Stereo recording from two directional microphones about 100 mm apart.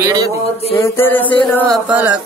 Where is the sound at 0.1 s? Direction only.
35° right (ahead or behind).